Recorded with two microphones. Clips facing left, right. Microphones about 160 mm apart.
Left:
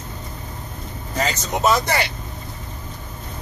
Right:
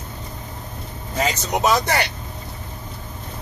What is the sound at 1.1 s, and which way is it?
Speech, 10° right (ahead or behind).